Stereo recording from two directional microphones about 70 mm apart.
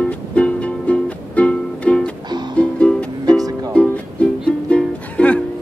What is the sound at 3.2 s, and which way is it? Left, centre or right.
Music, right.